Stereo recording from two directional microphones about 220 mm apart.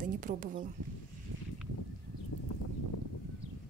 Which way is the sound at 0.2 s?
35° right (ahead or behind).